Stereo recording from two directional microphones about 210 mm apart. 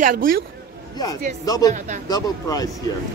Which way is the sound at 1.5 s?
15° left (ahead or behind).